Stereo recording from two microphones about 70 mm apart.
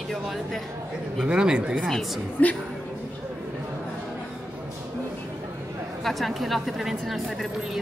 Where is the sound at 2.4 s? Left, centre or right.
Left.